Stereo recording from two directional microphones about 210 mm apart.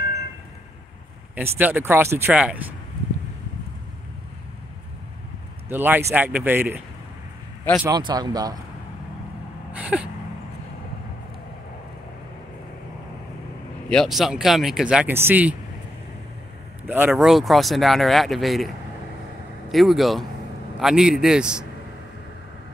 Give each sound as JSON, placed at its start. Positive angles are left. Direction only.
{"t": 1.3, "sound": "speech", "side_deg": -10}
{"t": 5.7, "sound": "speech", "side_deg": -10}
{"t": 7.8, "sound": "speech", "side_deg": -20}
{"t": 9.7, "sound": "a sound", "side_deg": -5}
{"t": 13.8, "sound": "speech", "side_deg": 0}
{"t": 16.8, "sound": "speech", "side_deg": -10}
{"t": 19.7, "sound": "speech", "side_deg": 0}